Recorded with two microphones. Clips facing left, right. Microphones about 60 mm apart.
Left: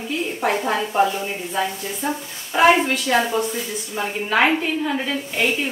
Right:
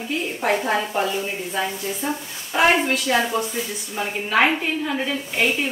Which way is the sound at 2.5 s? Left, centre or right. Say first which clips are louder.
Left 3 dB; centre.